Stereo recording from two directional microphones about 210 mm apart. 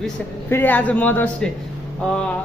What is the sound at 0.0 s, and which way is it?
Speech, 10° left (ahead or behind).